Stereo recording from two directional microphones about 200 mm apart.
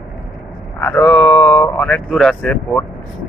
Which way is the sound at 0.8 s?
10° left (ahead or behind).